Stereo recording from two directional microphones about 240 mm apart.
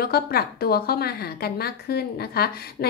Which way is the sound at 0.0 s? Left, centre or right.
Left.